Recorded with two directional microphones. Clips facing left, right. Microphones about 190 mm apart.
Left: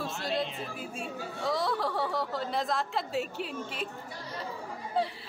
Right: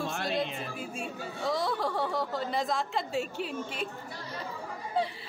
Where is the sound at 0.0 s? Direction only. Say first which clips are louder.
Right 1 dB; 55° right (ahead or behind).